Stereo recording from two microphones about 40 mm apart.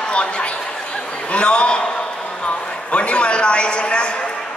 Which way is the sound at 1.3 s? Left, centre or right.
Left.